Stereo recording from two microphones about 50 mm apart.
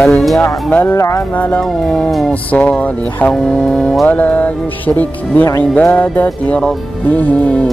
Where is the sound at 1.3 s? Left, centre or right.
Left.